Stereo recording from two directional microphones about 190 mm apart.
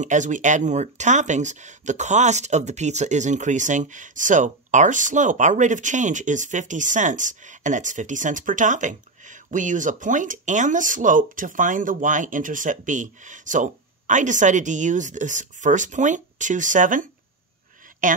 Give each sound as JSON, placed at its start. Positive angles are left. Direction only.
{"t": 0.0, "sound": "speech", "side_deg": -40}